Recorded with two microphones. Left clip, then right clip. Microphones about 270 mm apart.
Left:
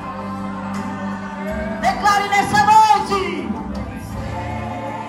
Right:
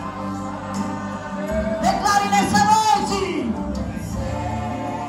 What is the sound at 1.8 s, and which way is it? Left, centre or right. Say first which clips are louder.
Music: left 3 dB; centre.